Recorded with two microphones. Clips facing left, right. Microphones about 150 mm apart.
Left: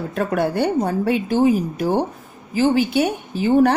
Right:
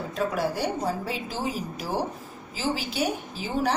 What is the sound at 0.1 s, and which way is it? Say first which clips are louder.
Speech: left 6 dB; 55° left (ahead or behind).